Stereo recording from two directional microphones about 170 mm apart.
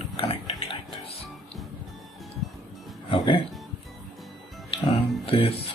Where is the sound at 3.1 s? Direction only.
30° left (ahead or behind).